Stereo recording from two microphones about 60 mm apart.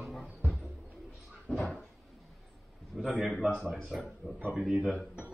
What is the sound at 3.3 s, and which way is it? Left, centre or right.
Speech, centre.